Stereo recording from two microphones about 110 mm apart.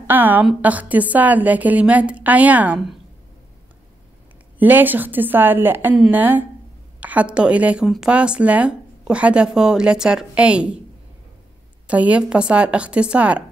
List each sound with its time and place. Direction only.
0.0 s a woman's voice: 15° right (ahead or behind)
4.6 s speech: 15° right (ahead or behind)
11.9 s speech: 10° right (ahead or behind)